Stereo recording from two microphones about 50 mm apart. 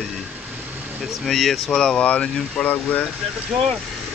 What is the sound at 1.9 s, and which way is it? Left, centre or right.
Speech, left.